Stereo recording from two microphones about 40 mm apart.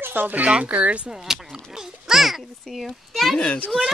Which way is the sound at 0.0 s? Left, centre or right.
Right.